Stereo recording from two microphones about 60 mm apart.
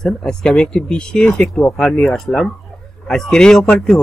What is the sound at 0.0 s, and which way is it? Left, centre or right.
A man's voice, centre.